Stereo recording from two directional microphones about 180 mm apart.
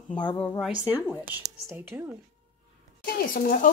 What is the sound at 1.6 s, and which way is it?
Speech, 10° right (ahead or behind).